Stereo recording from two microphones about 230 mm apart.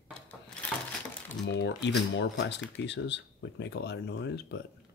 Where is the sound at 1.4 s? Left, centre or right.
Left.